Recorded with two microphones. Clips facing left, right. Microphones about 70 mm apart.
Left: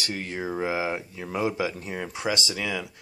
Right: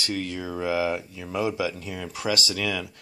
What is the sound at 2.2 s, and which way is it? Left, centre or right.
Speech, left.